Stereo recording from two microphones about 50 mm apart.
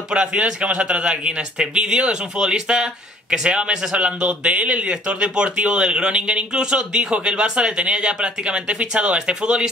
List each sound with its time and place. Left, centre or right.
0.1 s a man's voice: centre